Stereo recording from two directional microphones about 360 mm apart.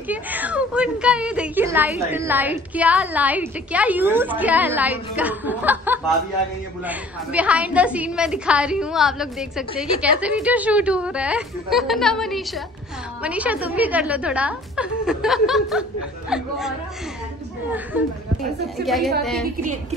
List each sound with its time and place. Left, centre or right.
0.1 s a woman's voice: centre
18.9 s a woman's voice: centre